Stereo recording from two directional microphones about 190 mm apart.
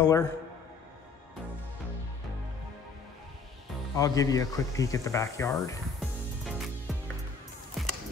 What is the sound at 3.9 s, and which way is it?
Speech, 20° left (ahead or behind).